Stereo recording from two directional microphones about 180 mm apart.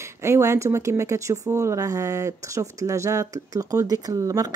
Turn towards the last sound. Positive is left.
turn(degrees=-20)  # may be behind; listen again after turning